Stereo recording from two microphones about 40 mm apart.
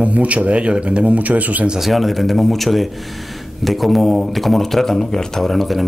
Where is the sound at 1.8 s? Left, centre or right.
Centre.